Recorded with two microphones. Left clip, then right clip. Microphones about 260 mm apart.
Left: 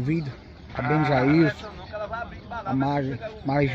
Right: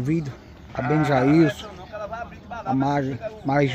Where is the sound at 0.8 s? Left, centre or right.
Right.